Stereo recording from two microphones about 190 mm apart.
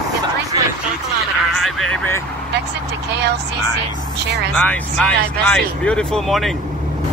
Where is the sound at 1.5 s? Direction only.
Centre (ahead or behind).